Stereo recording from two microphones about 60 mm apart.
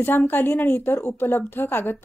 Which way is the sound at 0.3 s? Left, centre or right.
Left.